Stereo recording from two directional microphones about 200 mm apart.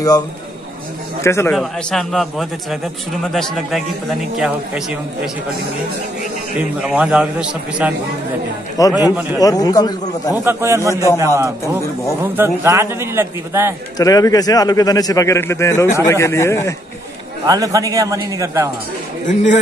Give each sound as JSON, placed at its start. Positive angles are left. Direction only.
{"t": 1.2, "sound": "a man's voice", "side_deg": 15}
{"t": 1.5, "sound": "a man's voice", "side_deg": 5}
{"t": 6.8, "sound": "a man's voice", "side_deg": -5}
{"t": 8.8, "sound": "a man's voice", "side_deg": 15}
{"t": 10.3, "sound": "a man's voice", "side_deg": -10}
{"t": 13.9, "sound": "a man's voice", "side_deg": 20}
{"t": 17.5, "sound": "a man's voice", "side_deg": -15}
{"t": 19.2, "sound": "a man's voice", "side_deg": 40}